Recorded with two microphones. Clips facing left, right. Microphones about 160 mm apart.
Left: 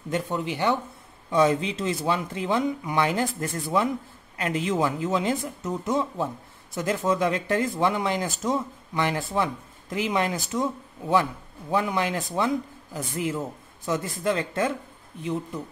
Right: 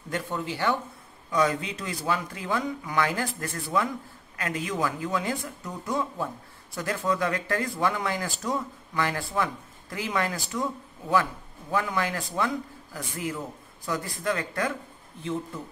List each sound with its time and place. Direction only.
0.1 s speech: 20° left (ahead or behind)